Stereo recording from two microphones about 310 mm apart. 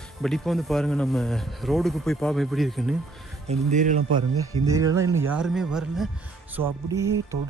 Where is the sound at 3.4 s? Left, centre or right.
Right.